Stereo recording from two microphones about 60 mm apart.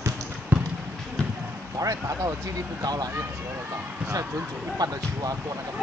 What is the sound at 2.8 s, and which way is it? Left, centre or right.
Speech, right.